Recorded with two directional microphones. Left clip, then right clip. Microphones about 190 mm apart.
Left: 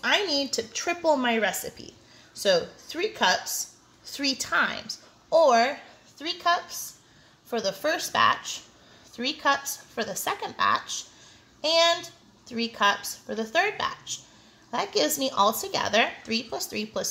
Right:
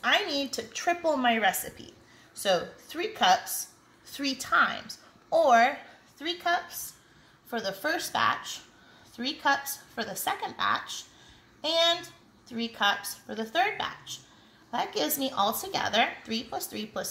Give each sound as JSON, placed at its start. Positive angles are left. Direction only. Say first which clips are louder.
{"t": 0.0, "sound": "a woman's voice", "louder": "left 2 dB", "side_deg": 50}